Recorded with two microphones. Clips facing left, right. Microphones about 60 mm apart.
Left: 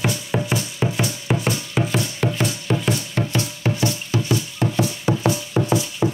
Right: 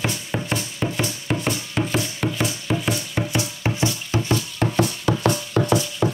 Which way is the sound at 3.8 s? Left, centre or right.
Right.